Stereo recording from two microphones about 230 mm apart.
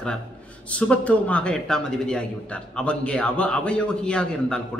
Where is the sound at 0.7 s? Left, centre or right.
Centre.